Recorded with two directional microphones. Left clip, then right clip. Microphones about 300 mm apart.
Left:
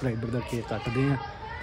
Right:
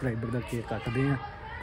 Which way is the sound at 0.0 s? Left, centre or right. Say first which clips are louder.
Left 2 dB; centre.